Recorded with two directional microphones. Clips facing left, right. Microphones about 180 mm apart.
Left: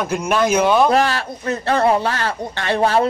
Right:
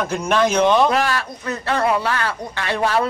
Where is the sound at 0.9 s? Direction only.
35° left (ahead or behind).